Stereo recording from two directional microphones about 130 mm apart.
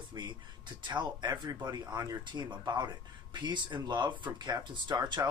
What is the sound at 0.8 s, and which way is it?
Speech, 35° right (ahead or behind).